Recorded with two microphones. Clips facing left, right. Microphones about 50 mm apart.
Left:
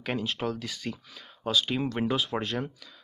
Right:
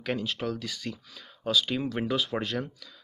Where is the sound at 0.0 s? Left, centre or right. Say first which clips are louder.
Even; centre.